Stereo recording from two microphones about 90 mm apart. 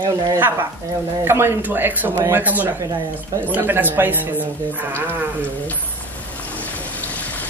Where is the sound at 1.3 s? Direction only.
30° right (ahead or behind).